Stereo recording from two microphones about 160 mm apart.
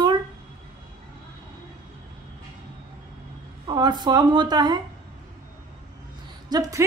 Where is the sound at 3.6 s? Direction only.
25° right (ahead or behind).